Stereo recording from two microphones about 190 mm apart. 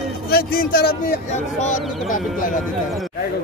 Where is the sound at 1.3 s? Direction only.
40° left (ahead or behind).